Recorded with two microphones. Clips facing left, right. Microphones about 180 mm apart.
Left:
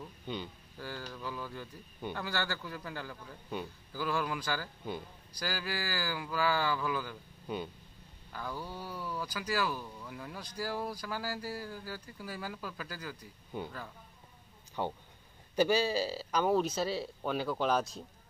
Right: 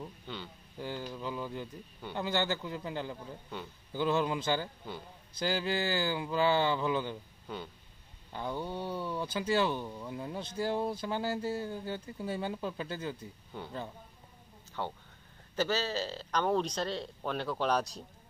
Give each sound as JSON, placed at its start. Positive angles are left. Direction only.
{"t": 0.3, "sound": "speech", "side_deg": 15}
{"t": 0.7, "sound": "speech", "side_deg": -20}
{"t": 7.4, "sound": "speech", "side_deg": 15}
{"t": 8.3, "sound": "speech", "side_deg": -25}
{"t": 14.8, "sound": "speech", "side_deg": 15}